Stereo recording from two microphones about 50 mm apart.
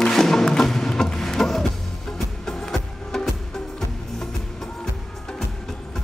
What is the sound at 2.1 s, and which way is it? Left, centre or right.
Music, centre.